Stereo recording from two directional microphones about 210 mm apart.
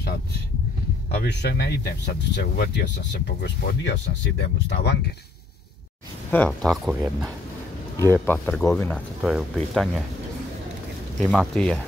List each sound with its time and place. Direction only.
1.2 s speech: 50° left (ahead or behind)
6.3 s speech: 5° left (ahead or behind)
8.3 s speech: 10° left (ahead or behind)
9.2 s speech: centre (ahead or behind)
11.1 s speech: centre (ahead or behind)